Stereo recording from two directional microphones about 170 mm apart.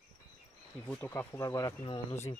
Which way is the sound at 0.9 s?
10° left (ahead or behind).